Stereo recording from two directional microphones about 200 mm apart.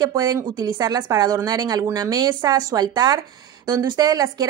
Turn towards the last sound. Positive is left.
turn(degrees=-20)  # may be behind; listen again after turning